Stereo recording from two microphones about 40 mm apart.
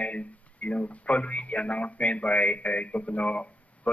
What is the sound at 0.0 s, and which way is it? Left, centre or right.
Speech, left.